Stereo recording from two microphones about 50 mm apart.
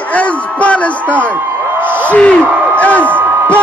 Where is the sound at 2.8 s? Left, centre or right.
Left.